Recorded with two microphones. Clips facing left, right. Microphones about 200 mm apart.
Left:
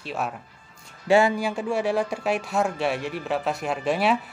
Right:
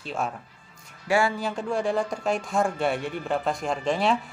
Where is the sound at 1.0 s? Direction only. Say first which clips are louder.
Left 5 dB; 20° left (ahead or behind).